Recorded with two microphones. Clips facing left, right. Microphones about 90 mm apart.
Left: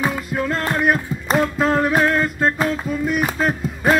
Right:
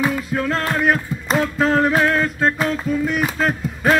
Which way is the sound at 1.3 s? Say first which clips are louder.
Even; 5° left (ahead or behind).